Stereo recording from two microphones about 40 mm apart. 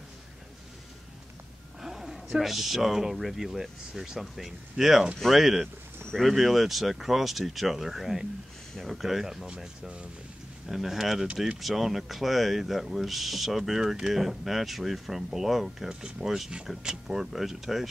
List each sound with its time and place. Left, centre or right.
1.8 s a sound: centre
2.4 s speech: centre
10.7 s speech: centre
15.9 s speech: right; by 17.8 s centre